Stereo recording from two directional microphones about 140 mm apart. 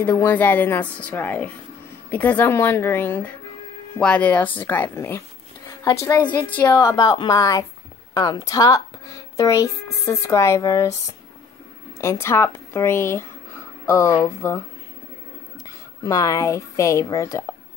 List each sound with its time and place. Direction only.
0.0 s a woman's voice: 15° left (ahead or behind)
6.8 s speech: 25° left (ahead or behind)
12.0 s a woman's voice: 20° left (ahead or behind)
16.0 s speech: 25° left (ahead or behind)